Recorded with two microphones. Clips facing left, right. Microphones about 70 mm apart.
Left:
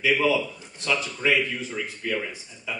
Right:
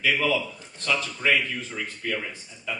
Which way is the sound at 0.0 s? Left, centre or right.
Centre.